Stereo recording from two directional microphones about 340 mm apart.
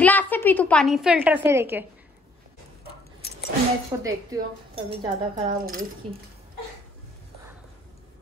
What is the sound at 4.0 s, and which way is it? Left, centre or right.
Speech, centre.